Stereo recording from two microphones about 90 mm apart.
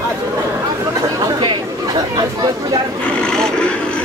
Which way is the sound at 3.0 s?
10° left (ahead or behind).